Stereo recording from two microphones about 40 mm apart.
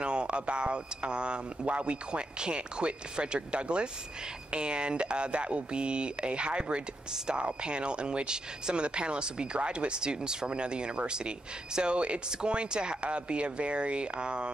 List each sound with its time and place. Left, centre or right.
0.0 s speech: right